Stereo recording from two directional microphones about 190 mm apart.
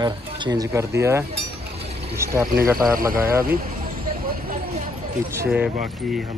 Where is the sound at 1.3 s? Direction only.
30° right (ahead or behind).